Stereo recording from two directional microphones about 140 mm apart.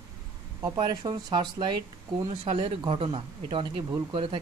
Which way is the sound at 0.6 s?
30° right (ahead or behind).